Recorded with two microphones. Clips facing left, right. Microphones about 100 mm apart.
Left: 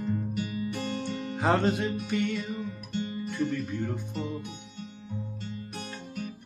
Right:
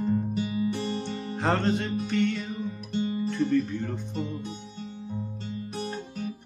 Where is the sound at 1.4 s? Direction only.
5° left (ahead or behind).